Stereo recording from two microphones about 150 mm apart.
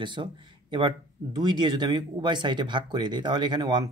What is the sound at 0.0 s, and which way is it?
Speech, 30° right (ahead or behind).